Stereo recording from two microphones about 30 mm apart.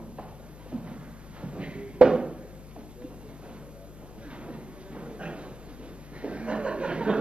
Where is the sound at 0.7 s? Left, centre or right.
Right.